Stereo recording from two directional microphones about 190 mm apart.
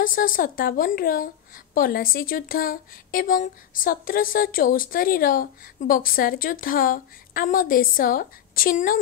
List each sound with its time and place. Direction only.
0.0 s a woman's voice: 45° left (ahead or behind)